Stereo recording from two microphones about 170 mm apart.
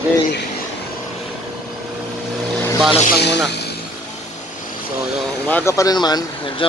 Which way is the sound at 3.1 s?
80° left.